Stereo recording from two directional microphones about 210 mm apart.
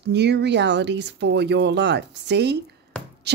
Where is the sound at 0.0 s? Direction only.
55° right (ahead or behind).